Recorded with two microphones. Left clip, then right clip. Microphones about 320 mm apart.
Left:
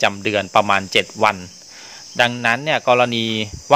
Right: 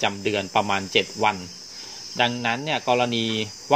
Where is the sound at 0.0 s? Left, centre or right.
Left.